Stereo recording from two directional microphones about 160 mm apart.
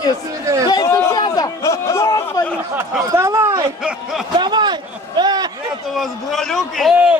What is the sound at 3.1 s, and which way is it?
Speech, 20° right (ahead or behind).